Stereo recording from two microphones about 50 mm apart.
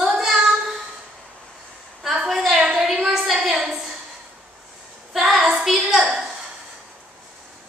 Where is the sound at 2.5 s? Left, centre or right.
Right.